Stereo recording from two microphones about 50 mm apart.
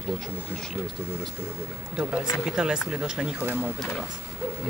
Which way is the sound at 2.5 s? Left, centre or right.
Centre.